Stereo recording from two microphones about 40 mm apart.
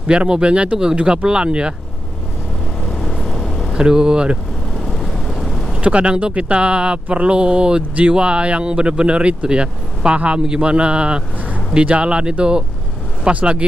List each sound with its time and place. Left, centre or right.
0.3 s speech: right
2.8 s vehicle: centre
3.7 s speech: right
4.7 s vehicle: centre
5.8 s speech: right
7.3 s speech: right